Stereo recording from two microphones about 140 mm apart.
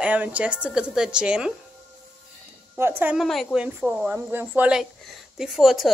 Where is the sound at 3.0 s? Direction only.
10° right (ahead or behind).